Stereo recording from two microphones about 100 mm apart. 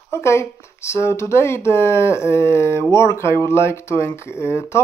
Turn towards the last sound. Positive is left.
turn(degrees=25)  # may be behind; listen again after turning